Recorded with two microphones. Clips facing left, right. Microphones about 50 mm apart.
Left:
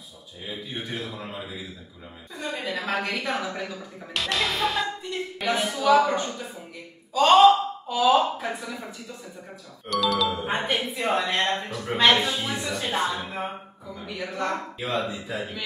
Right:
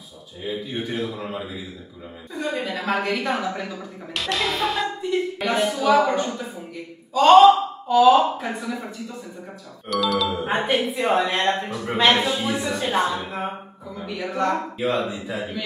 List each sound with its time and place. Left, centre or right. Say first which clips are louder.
0.5 s a woman's voice: right 6 dB; centre